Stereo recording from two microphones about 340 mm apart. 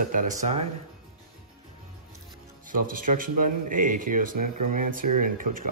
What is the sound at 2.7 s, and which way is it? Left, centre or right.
Speech, right.